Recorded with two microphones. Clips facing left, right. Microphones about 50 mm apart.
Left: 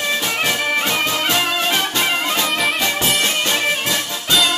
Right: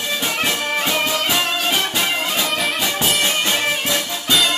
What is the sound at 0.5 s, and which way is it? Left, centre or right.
Music, centre.